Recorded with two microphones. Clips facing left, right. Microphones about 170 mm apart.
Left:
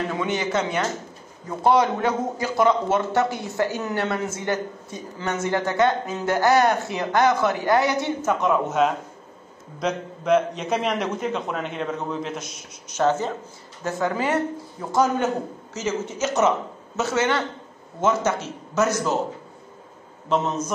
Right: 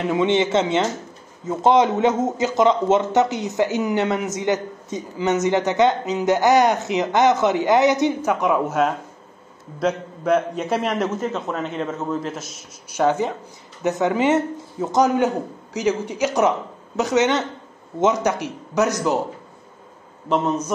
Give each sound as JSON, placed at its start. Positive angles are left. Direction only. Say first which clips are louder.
{"t": 0.1, "sound": "a man's voice", "louder": "right 6 dB", "side_deg": -25}
{"t": 20.2, "sound": "a man's voice", "louder": "right 2 dB", "side_deg": -10}